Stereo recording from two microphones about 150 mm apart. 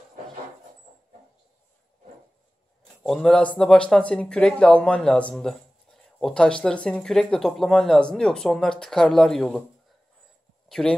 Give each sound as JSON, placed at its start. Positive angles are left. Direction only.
{"t": 3.0, "sound": "speech", "side_deg": 0}
{"t": 10.7, "sound": "speech", "side_deg": 5}